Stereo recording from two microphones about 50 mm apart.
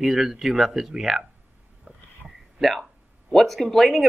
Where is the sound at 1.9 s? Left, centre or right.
Right.